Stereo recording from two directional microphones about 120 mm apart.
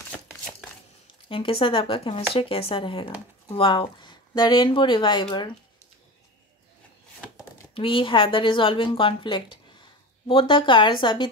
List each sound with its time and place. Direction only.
1.3 s speech: 50° left (ahead or behind)
7.7 s a woman's voice: 45° left (ahead or behind)